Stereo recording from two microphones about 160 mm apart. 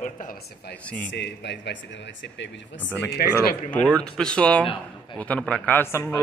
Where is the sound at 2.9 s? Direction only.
15° left (ahead or behind).